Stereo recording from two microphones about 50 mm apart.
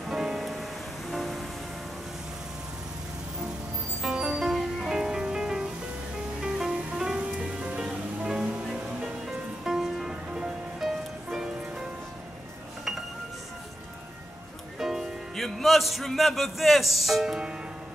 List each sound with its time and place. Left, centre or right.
0.0 s music: centre
1.1 s train: centre
4.0 s music: centre
9.7 s music: centre
14.8 s music: centre
15.4 s a man's voice: centre